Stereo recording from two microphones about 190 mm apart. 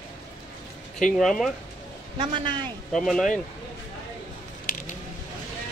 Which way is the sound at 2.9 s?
Centre (ahead or behind).